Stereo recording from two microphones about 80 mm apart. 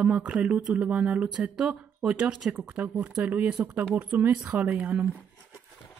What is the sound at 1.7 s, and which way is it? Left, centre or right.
Speech, centre.